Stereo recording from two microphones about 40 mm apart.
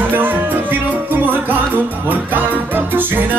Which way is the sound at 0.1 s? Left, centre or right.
Right.